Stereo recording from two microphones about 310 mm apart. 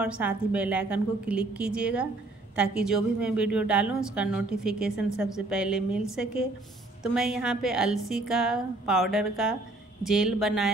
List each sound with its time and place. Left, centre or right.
0.0 s a woman's voice: centre